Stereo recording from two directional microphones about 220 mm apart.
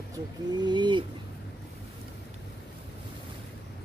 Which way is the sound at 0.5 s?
20° right (ahead or behind).